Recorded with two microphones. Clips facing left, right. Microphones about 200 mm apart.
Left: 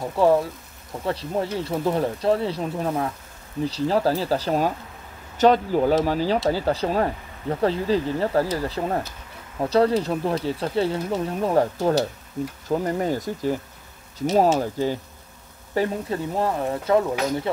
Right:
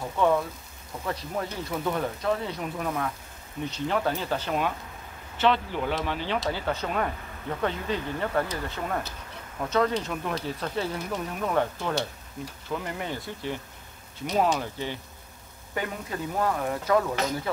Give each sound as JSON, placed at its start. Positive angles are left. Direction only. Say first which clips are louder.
{"t": 0.1, "sound": "speech", "louder": "left 5 dB", "side_deg": 30}